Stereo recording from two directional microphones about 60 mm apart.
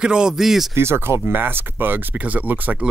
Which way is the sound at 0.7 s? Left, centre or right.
Right.